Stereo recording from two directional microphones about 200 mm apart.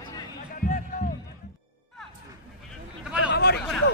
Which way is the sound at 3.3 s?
55° left (ahead or behind).